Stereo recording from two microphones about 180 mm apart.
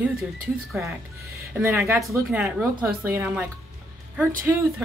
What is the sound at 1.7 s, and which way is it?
Speech, 15° right (ahead or behind).